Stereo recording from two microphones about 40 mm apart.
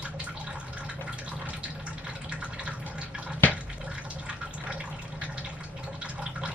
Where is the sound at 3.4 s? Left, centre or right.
Left.